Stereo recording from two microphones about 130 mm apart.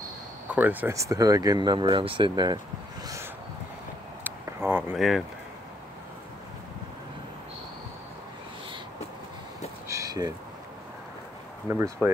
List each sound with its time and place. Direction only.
0.6 s speech: 15° right (ahead or behind)
0.9 s speech: 25° right (ahead or behind)
4.2 s a sound: 15° right (ahead or behind)
4.9 s speech: centre (ahead or behind)
9.8 s a sound: 25° right (ahead or behind)
11.7 s speech: 20° right (ahead or behind)